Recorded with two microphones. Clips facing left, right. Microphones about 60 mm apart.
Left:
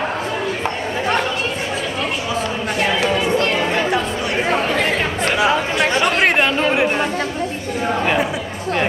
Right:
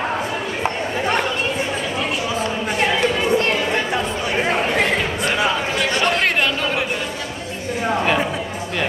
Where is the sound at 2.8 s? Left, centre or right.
Centre.